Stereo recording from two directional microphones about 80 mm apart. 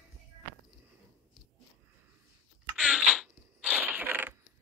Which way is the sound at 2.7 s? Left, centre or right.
Centre.